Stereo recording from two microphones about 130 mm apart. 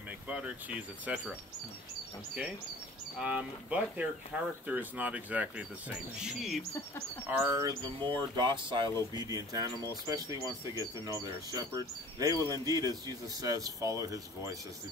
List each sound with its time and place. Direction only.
0.3 s speech: 10° right (ahead or behind)
3.2 s speech: 10° right (ahead or behind)
7.2 s speech: 15° right (ahead or behind)
8.0 s speech: 35° right (ahead or behind)